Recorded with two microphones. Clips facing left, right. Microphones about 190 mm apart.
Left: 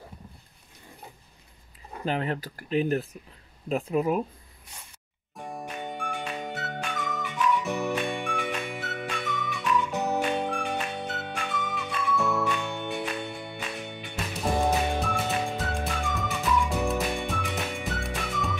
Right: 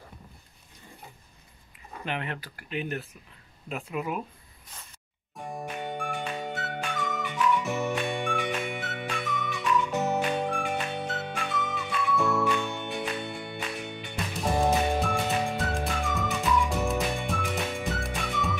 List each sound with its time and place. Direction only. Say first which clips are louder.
2.0 s speech: left 5 dB; 35° left (ahead or behind)
5.3 s music: right 1 dB; centre (ahead or behind)